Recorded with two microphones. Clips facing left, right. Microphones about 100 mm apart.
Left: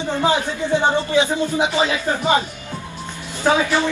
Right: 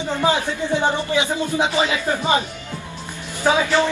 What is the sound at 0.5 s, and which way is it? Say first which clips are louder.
Speech: left 2 dB; 20° left (ahead or behind).